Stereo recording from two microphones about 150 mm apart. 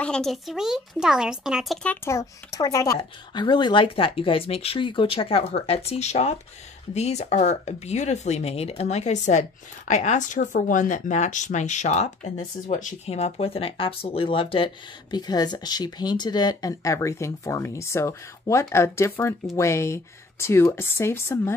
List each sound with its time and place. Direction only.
0.0 s speech: 5° left (ahead or behind)
2.0 s speech: 20° left (ahead or behind)